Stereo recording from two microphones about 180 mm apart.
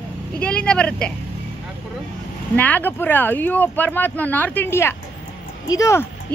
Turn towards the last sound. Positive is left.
turn(degrees=15)  # may be behind; listen again after turning